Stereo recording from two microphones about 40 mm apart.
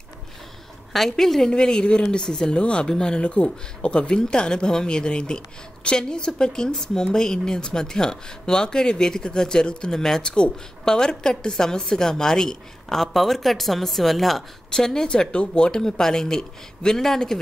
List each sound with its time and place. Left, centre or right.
0.9 s speech: centre
1.5 s speech: left
2.5 s speech: left
10.2 s a woman's voice: left; by 14.4 s centre
14.7 s a woman's voice: centre